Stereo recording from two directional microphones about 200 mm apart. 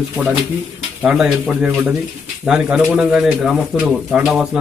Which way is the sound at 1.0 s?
Centre (ahead or behind).